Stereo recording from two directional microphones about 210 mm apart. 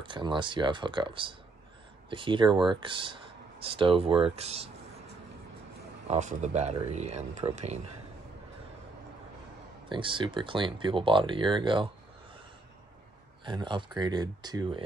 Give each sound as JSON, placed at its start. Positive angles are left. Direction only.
{"t": 0.0, "sound": "speech", "side_deg": -20}
{"t": 6.0, "sound": "speech", "side_deg": -35}
{"t": 9.8, "sound": "speech", "side_deg": -25}
{"t": 13.4, "sound": "speech", "side_deg": -20}